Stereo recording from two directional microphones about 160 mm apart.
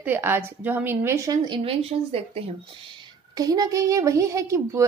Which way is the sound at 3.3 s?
25° right (ahead or behind).